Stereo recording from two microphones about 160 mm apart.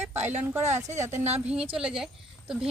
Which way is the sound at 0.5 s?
15° right (ahead or behind).